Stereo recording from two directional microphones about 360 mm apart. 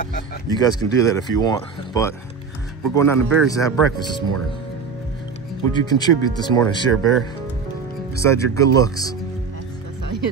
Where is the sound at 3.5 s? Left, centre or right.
Centre.